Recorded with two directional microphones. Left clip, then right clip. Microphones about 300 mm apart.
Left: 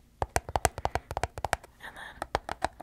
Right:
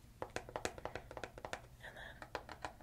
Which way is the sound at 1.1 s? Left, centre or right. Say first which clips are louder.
Left 15 dB; left.